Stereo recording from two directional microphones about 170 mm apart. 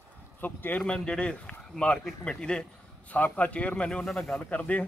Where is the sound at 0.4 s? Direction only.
10° left (ahead or behind).